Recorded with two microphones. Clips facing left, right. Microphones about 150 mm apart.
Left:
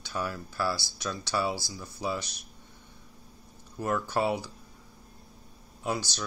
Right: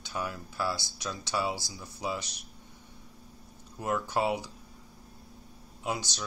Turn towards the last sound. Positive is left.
turn(degrees=-15)  # may be behind; listen again after turning